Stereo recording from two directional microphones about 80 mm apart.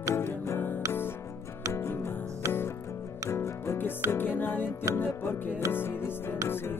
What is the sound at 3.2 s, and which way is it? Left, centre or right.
Music, left.